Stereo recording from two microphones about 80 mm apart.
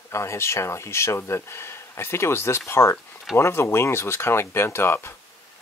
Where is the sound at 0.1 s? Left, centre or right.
Left.